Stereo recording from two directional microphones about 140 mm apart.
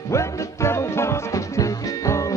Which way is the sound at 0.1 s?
20° left (ahead or behind).